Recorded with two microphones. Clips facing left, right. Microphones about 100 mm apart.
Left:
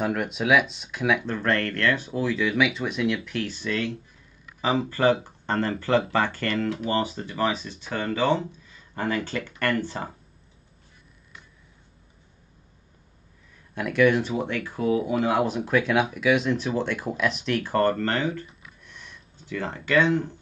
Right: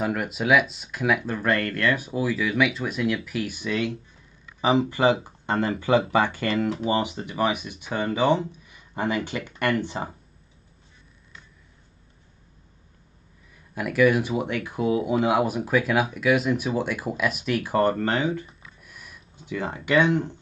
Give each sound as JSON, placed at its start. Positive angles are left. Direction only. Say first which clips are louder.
{"t": 0.0, "sound": "speech", "louder": "even", "side_deg": 0}
{"t": 13.7, "sound": "speech", "louder": "even", "side_deg": -5}